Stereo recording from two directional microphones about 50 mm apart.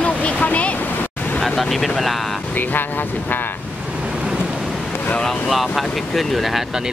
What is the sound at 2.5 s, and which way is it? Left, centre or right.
Speech, left.